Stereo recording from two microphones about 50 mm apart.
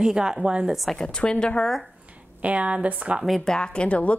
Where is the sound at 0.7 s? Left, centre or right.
Centre.